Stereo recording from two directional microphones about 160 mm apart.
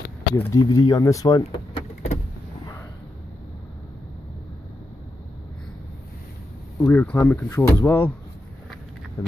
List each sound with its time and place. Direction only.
0.4 s speech: 20° left (ahead or behind)
1.4 s vehicle: 40° left (ahead or behind)
6.8 s speech: 10° left (ahead or behind)